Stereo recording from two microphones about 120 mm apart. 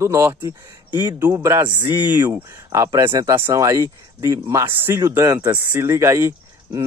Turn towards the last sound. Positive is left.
turn(degrees=-25)  # may be behind; listen again after turning